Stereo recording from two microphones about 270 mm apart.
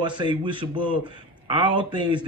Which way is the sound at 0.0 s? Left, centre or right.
Centre.